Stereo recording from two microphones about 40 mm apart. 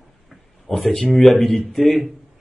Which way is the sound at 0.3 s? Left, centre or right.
Centre.